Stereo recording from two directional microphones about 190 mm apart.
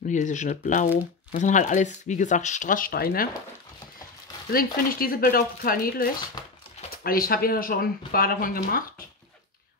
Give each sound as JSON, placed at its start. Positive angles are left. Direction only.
{"t": 0.1, "sound": "speech", "side_deg": 40}
{"t": 4.5, "sound": "speech", "side_deg": 50}